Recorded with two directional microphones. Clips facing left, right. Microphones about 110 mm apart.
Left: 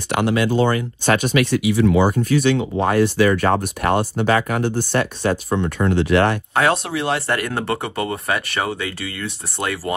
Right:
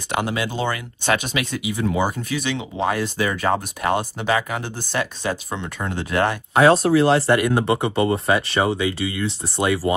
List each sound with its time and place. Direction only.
0.1 s speech: 55° left (ahead or behind)
6.5 s speech: 30° right (ahead or behind)